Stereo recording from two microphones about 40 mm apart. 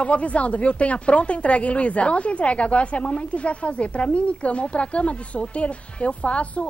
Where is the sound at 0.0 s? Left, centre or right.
Left.